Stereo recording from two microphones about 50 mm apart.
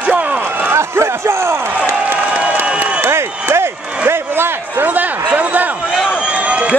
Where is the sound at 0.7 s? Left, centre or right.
Right.